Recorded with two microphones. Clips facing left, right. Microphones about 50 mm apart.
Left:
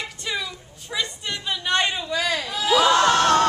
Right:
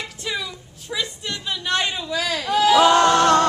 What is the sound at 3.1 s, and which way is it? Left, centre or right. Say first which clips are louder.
A capella: right 2 dB; right.